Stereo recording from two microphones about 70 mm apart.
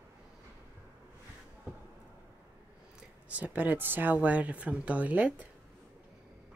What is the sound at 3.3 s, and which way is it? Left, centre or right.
Speech, right.